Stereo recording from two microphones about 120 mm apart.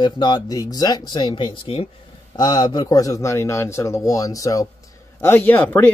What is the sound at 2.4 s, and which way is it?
A man's voice, 35° left (ahead or behind).